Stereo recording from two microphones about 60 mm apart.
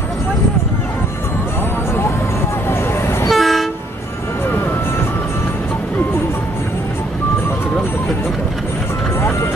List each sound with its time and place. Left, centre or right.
3.3 s train: centre